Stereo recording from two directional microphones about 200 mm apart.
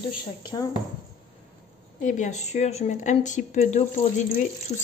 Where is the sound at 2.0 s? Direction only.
40° left (ahead or behind).